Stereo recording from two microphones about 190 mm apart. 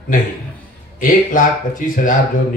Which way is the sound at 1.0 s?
45° left (ahead or behind).